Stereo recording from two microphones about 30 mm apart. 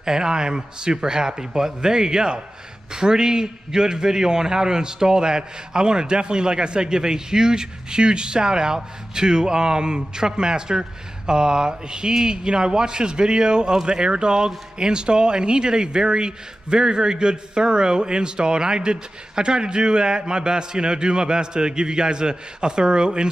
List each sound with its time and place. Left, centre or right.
0.0 s speech: right